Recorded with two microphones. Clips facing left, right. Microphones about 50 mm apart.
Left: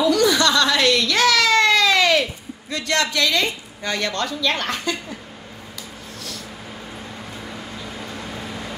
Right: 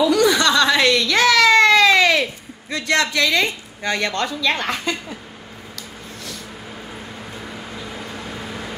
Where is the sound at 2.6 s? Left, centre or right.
Centre.